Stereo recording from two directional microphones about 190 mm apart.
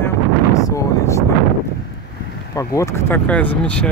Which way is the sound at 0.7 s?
15° left (ahead or behind).